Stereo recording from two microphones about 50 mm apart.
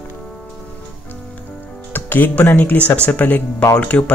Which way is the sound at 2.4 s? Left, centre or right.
Left.